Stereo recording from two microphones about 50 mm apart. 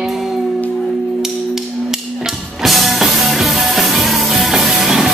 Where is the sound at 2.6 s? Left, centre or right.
Centre.